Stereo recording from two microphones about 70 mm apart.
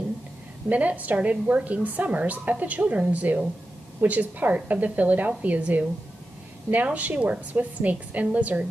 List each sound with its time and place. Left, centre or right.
0.7 s a woman's voice: right